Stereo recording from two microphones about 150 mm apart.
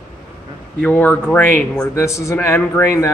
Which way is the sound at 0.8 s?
10° left (ahead or behind).